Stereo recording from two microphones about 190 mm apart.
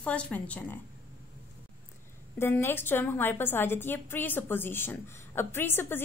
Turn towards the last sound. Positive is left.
turn(degrees=10)  # may be behind; listen again after turning